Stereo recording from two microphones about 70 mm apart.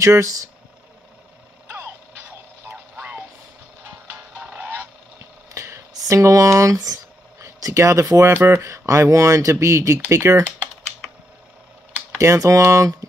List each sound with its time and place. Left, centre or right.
0.0 s speech: right
1.7 s music: right
4.4 s goose: centre
4.6 s goose: right
5.9 s speech: right
8.3 s speech: right
12.2 s speech: right